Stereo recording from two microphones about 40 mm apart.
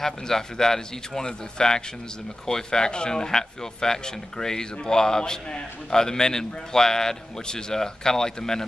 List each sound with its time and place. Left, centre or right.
0.0 s speech: centre